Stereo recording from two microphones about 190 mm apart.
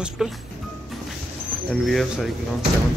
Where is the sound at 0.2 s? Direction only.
5° right (ahead or behind).